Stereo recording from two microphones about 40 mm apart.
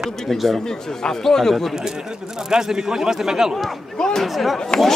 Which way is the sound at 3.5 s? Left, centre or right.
Centre.